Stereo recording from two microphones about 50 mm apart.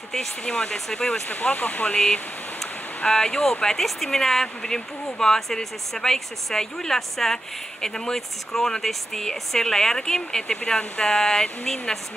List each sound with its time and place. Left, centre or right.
0.1 s speech: centre
1.3 s speech: left
3.1 s speech: centre